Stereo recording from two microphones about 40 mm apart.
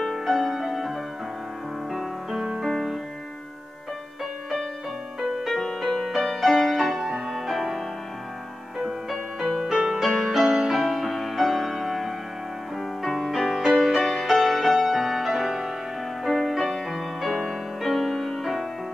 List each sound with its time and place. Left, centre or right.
0.0 s music: centre
5.2 s music: centre
10.4 s music: right
10.7 s music: centre